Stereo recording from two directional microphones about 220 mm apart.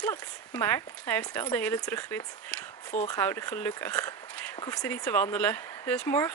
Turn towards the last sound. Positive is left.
turn(degrees=10)  # may be behind; listen again after turning